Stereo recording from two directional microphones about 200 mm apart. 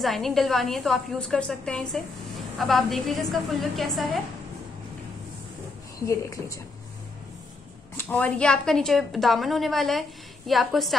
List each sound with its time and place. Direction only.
0.0 s a woman's voice: centre (ahead or behind)
5.9 s speech: 15° left (ahead or behind)
8.0 s a woman's voice: 10° left (ahead or behind)